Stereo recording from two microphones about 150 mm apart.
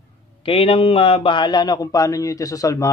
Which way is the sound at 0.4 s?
40° left (ahead or behind).